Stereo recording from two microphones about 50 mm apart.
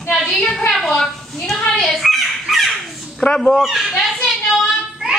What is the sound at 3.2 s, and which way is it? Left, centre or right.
Speech, left.